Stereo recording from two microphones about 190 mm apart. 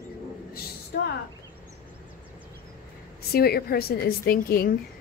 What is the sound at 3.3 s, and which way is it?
Speech, 55° left (ahead or behind).